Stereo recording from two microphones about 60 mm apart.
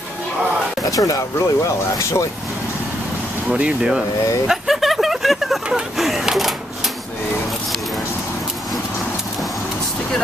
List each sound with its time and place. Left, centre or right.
0.8 s speech: left
3.5 s speech: centre
4.5 s a sound: centre